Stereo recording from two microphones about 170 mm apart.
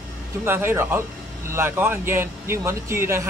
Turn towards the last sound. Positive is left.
turn(degrees=-15)  # may be behind; listen again after turning